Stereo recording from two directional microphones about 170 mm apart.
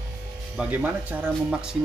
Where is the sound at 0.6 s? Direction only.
10° right (ahead or behind).